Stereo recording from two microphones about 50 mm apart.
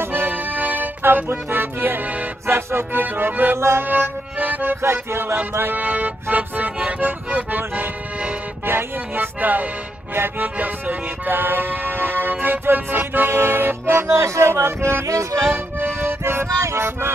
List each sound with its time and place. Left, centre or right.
0.1 s music: right
2.4 s music: right
3.5 s music: right
3.8 s music: right
5.8 s music: right
6.3 s speech: right
8.6 s music: right
14.1 s music: right
14.5 s music: right
15.5 s music: right
16.6 s music: right